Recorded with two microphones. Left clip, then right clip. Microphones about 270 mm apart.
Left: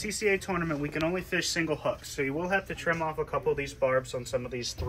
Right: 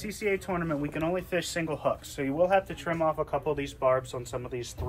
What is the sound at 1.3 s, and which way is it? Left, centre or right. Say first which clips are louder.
Speech: left 1 dB; right.